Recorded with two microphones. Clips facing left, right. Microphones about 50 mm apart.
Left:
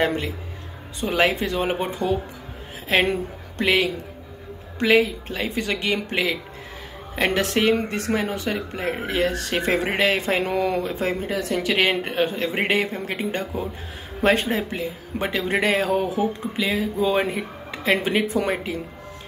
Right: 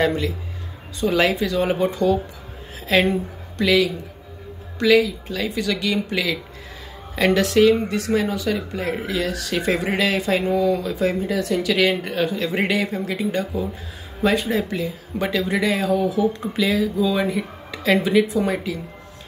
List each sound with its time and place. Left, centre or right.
0.0 s a woman's voice: left
15.5 s speech: left
16.3 s speech: left